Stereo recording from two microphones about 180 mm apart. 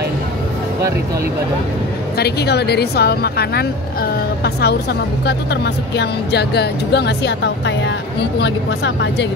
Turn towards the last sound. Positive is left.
turn(degrees=75)  # may be behind; listen again after turning